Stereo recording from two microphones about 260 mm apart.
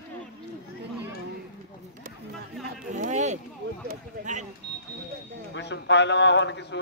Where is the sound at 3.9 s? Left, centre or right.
Right.